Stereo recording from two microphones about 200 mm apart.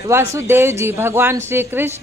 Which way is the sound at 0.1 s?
15° right (ahead or behind).